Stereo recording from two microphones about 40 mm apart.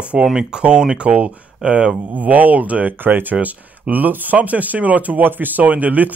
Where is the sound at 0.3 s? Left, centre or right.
Centre.